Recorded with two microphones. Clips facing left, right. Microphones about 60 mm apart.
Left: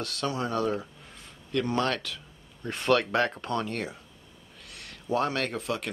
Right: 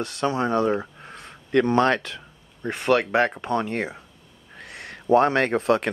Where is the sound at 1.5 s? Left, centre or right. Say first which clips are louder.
Right 8 dB; right.